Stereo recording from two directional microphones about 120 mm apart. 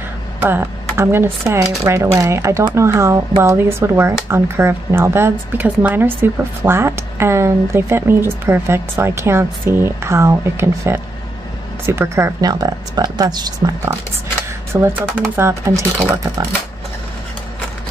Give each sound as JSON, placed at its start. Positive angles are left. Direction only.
{"t": 0.4, "sound": "speech", "side_deg": -20}
{"t": 14.7, "sound": "speech", "side_deg": -20}